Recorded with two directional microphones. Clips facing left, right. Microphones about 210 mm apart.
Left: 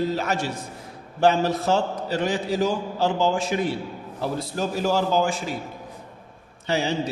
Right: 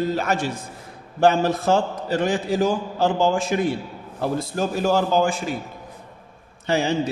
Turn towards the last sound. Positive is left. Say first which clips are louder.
# right 3 dB
turn(degrees=-50)  # may be behind; listen again after turning